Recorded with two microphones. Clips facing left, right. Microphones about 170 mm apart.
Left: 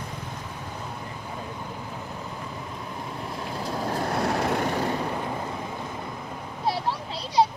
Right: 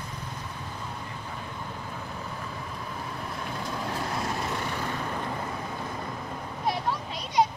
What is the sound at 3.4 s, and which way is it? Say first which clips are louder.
Boat: left 4 dB; 35° left (ahead or behind).